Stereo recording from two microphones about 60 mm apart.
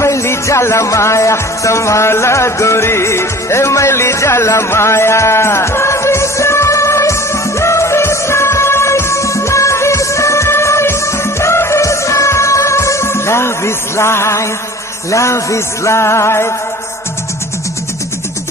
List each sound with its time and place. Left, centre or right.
0.0 s music: left